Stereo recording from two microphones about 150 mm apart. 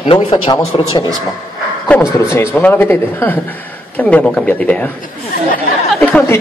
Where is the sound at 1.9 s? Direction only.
10° left (ahead or behind).